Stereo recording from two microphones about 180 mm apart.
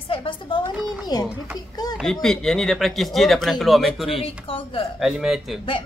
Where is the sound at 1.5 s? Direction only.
20° left (ahead or behind).